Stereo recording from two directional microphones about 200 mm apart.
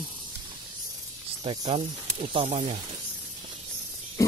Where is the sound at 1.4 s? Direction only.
25° right (ahead or behind).